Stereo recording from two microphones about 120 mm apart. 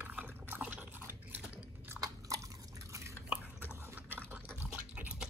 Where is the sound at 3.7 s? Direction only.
20° right (ahead or behind).